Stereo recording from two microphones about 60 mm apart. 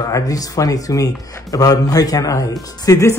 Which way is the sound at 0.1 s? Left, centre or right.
Left.